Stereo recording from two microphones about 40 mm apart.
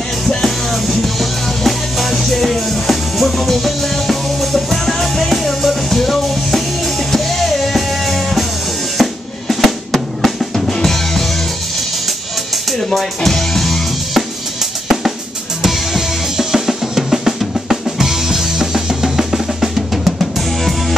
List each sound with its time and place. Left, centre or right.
0.3 s music: centre
8.9 s drum: centre
12.6 s music: centre
15.6 s drum kit: centre